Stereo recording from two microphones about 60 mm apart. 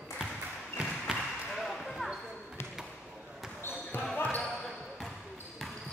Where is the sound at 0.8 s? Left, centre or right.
Centre.